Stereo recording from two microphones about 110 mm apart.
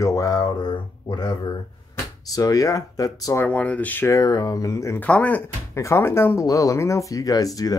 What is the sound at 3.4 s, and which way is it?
Speech, 15° left (ahead or behind).